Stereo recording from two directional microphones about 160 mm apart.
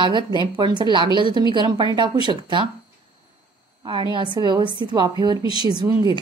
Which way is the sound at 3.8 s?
30° right (ahead or behind).